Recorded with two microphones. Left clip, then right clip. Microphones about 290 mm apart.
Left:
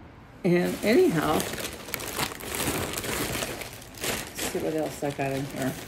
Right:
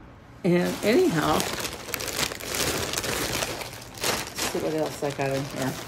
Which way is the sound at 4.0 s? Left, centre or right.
Centre.